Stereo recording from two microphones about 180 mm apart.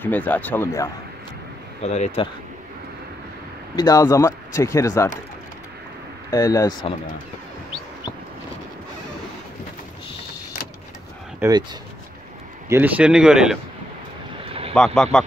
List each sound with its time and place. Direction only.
0.0 s speech: 10° left (ahead or behind)
1.8 s speech: 35° left (ahead or behind)
3.7 s speech: 20° left (ahead or behind)
6.3 s speech: 20° left (ahead or behind)
11.4 s speech: 15° right (ahead or behind)
12.6 s speech: 10° right (ahead or behind)
14.7 s speech: 5° left (ahead or behind)